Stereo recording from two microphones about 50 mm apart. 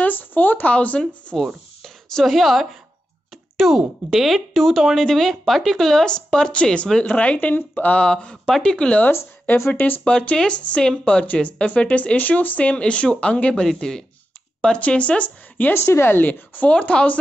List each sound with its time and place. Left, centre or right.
0.0 s a sound: left
0.7 s speech: left
1.8 s a woman's voice: centre; by 7.3 s left
7.3 s speech: left
8.0 s speech: centre
9.7 s speech: left
10.0 s speech: left
13.7 s speech: centre
14.8 s speech: left
15.7 s a woman's voice: left
16.7 s speech: left